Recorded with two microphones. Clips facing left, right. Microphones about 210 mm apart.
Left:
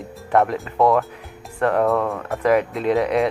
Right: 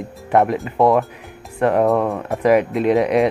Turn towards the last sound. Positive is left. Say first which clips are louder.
# right 3 dB
turn(degrees=-15)  # may be behind; listen again after turning